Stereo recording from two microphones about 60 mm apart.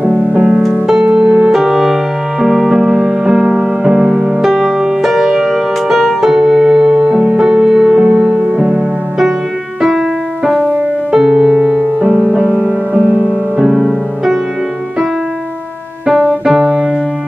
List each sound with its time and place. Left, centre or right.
0.0 s music: right
1.0 s music: centre
9.8 s music: centre
12.3 s music: right
13.6 s music: centre